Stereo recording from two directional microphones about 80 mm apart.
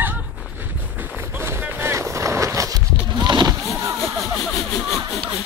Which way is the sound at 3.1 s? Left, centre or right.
Right.